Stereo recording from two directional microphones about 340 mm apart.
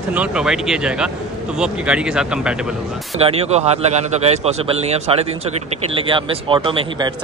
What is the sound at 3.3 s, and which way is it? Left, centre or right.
Speech, centre.